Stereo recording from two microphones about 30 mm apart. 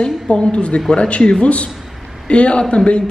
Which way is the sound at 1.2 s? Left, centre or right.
Left.